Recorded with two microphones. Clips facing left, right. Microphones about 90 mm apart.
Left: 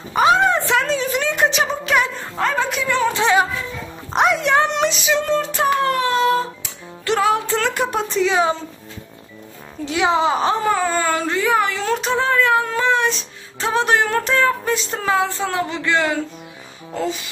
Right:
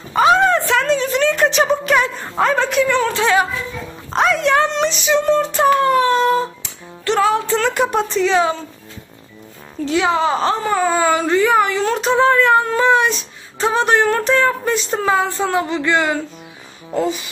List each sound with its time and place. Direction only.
0.1 s a sound: 15° left (ahead or behind)
0.8 s a sound: centre (ahead or behind)
1.5 s speech: centre (ahead or behind)
3.1 s speech: 20° left (ahead or behind)
4.8 s speech: centre (ahead or behind)
9.8 s speech: 15° left (ahead or behind)
10.6 s speech: 5° right (ahead or behind)
16.9 s music: 5° right (ahead or behind)